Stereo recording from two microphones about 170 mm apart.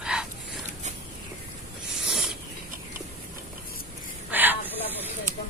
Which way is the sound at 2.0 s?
Centre (ahead or behind).